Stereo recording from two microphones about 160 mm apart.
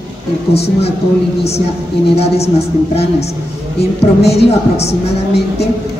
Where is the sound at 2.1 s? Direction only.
40° left (ahead or behind).